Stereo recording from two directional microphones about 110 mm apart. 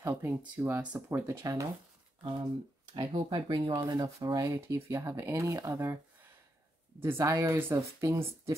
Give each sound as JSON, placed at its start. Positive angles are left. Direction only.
{"t": 0.0, "sound": "speech", "side_deg": -20}
{"t": 2.9, "sound": "speech", "side_deg": -45}
{"t": 4.6, "sound": "speech", "side_deg": -25}
{"t": 7.0, "sound": "speech", "side_deg": -20}